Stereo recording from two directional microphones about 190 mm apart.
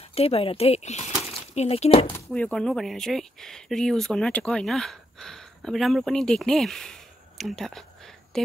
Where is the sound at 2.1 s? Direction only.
5° left (ahead or behind).